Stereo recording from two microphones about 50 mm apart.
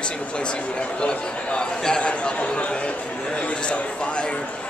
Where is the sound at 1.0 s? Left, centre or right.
Centre.